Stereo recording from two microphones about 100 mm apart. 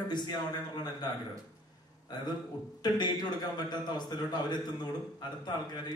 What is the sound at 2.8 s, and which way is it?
A man's voice, 45° left (ahead or behind).